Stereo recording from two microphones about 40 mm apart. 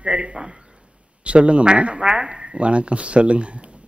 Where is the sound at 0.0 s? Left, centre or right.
Right.